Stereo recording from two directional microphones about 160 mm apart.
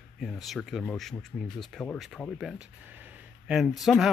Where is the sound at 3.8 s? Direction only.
Centre (ahead or behind).